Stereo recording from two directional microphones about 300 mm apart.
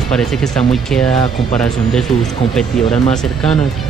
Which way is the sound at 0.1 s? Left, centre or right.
Centre.